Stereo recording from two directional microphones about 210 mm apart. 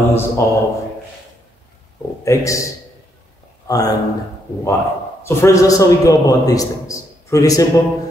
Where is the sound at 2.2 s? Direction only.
15° left (ahead or behind).